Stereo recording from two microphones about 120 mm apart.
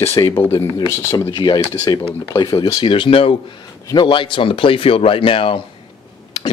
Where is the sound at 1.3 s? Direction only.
35° left (ahead or behind).